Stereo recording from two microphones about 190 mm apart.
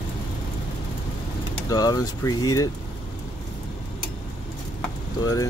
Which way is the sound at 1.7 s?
20° left (ahead or behind).